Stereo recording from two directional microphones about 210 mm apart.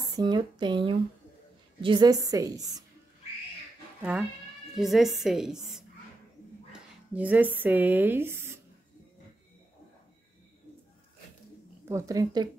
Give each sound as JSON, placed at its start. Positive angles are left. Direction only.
{"t": 0.0, "sound": "a woman's voice", "side_deg": -20}
{"t": 4.0, "sound": "a woman's voice", "side_deg": -5}
{"t": 11.9, "sound": "a woman's voice", "side_deg": -15}